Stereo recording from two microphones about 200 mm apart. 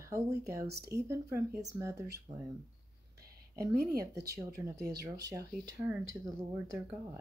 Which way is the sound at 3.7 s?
50° right (ahead or behind).